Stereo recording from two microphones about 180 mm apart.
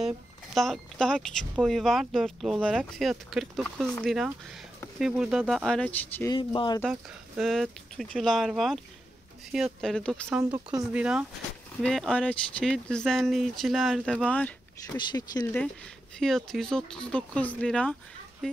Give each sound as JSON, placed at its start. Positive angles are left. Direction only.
{"t": 0.6, "sound": "speech", "side_deg": 5}
{"t": 6.3, "sound": "speech", "side_deg": 25}
{"t": 6.9, "sound": "speech", "side_deg": 0}
{"t": 10.8, "sound": "speech", "side_deg": -5}
{"t": 15.0, "sound": "speech", "side_deg": 25}
{"t": 16.2, "sound": "speech", "side_deg": 0}